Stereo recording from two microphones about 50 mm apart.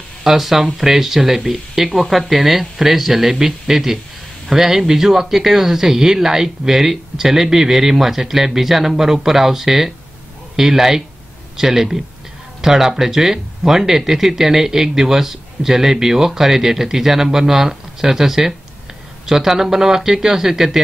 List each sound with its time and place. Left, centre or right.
0.2 s speech: centre